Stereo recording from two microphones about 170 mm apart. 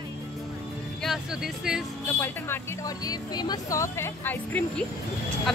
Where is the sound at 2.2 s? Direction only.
15° left (ahead or behind).